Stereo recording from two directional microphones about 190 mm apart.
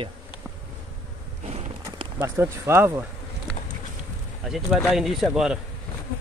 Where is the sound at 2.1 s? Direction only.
15° right (ahead or behind).